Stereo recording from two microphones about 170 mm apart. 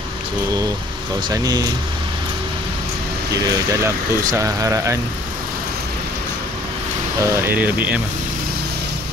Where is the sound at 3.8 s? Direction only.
20° right (ahead or behind).